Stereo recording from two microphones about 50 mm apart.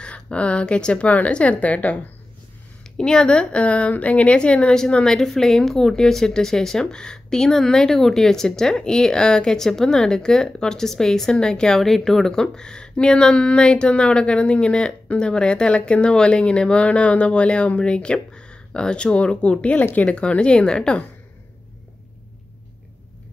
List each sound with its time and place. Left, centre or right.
0.0 s speech: left
3.0 s a woman's voice: centre